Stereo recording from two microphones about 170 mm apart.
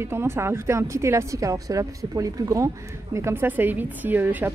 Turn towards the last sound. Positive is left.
turn(degrees=-10)  # may be behind; listen again after turning